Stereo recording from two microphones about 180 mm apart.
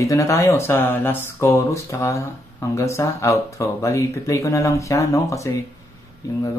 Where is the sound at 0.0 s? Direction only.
15° left (ahead or behind).